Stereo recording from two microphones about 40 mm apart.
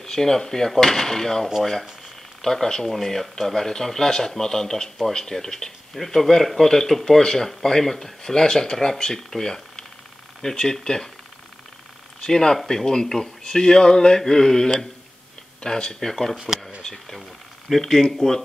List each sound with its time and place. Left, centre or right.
0.0 s speech: centre
12.2 s speech: centre
16.3 s speech: centre
16.8 s speech: centre